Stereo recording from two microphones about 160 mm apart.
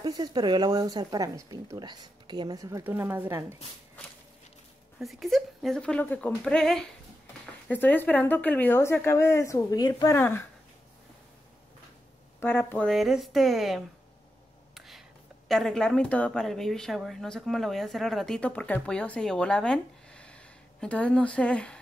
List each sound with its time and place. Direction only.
0.0 s speech: 25° right (ahead or behind)
5.0 s speech: centre (ahead or behind)
12.4 s speech: 10° left (ahead or behind)